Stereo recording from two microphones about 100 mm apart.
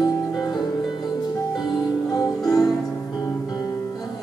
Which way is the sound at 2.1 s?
40° left (ahead or behind).